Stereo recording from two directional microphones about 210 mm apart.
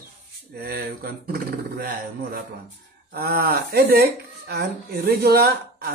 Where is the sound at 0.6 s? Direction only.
45° right (ahead or behind).